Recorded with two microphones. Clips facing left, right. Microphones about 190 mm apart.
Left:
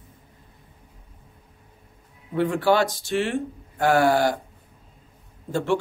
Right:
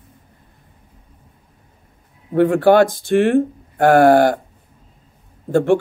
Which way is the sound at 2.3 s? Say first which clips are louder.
Right 8 dB; 55° right (ahead or behind).